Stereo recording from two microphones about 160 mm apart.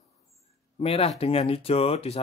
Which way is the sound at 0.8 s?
35° left (ahead or behind).